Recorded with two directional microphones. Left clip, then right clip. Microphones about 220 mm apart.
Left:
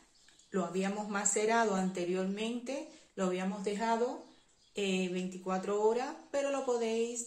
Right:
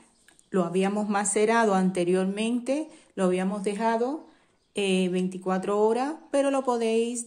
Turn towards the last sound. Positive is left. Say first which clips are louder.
# right 8 dB
turn(degrees=-55)  # may be behind; listen again after turning